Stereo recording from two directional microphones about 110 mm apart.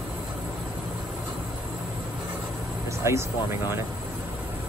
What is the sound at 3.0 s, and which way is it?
Speech, 25° right (ahead or behind).